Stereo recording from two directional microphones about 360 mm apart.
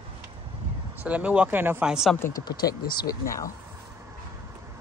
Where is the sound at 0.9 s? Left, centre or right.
Centre.